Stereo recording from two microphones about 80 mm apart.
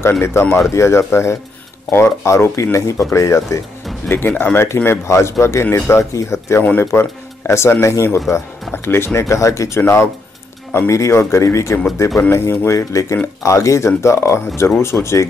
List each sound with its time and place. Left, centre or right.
0.2 s speech: left
4.1 s speech: left
6.6 s speech: left